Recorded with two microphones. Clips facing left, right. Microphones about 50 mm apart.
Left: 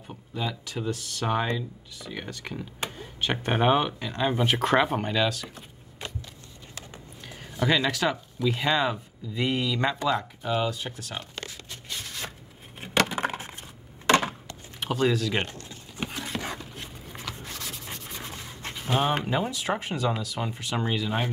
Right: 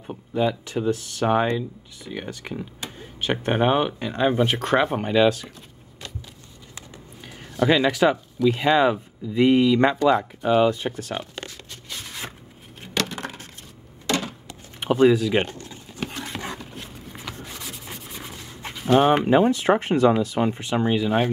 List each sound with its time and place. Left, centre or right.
0.0 s speech: right
7.2 s a sound: centre
7.6 s speech: centre
10.6 s speech: right
13.0 s a sound: centre
14.0 s a sound: left
14.5 s speech: centre
16.1 s rub: centre
18.6 s dog: centre
19.0 s speech: centre
19.4 s speech: right
20.7 s speech: centre